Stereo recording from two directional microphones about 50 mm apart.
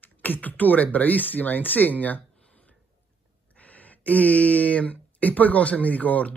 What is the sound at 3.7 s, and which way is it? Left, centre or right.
Speech, left.